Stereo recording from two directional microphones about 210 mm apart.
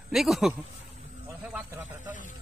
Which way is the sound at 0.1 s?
Centre (ahead or behind).